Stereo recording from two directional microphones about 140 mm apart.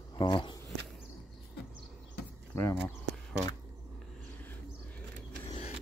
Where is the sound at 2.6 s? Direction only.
15° left (ahead or behind).